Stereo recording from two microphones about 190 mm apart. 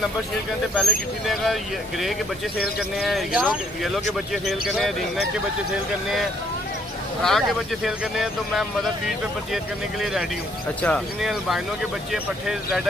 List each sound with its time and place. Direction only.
0.7 s speech: centre (ahead or behind)
7.2 s speech: centre (ahead or behind)